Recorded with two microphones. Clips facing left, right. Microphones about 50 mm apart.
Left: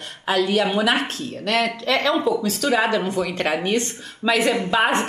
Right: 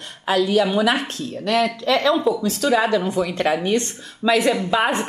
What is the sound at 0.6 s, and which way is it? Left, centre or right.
Speech, left.